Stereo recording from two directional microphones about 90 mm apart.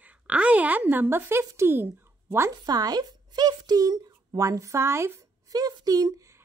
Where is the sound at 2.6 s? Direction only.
45° right (ahead or behind); by 5.2 s 30° right (ahead or behind).